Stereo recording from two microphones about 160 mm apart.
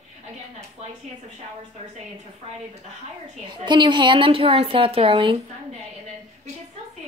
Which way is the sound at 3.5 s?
30° right (ahead or behind).